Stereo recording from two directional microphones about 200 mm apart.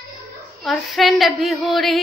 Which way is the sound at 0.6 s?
Centre (ahead or behind).